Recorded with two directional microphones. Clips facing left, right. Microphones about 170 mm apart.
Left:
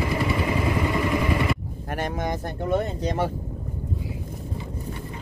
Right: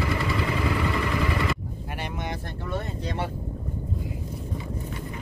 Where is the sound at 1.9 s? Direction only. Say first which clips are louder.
Left 6 dB; 45° left (ahead or behind).